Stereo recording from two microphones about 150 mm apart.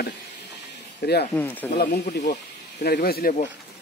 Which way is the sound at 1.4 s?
10° left (ahead or behind).